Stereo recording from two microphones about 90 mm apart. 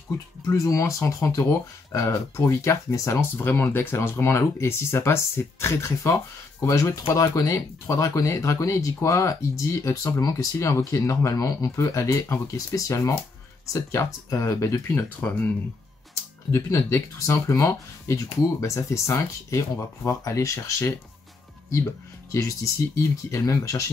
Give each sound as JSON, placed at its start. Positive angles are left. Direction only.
{"t": 0.5, "sound": "speech", "side_deg": 35}
{"t": 15.1, "sound": "speech", "side_deg": 20}
{"t": 16.5, "sound": "speech", "side_deg": 30}
{"t": 22.3, "sound": "speech", "side_deg": 35}